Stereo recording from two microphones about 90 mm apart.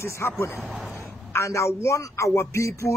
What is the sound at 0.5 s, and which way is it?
Speech, 5° right (ahead or behind).